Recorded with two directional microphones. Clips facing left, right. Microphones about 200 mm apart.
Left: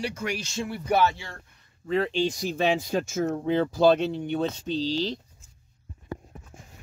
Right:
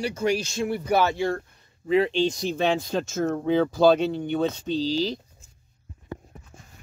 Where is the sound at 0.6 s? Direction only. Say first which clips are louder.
Even; 50° right (ahead or behind).